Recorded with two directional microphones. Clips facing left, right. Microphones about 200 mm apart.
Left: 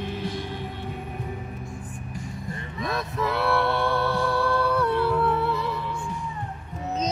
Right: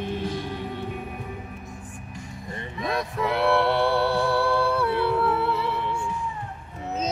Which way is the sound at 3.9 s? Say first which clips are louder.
Right 2 dB; 10° right (ahead or behind).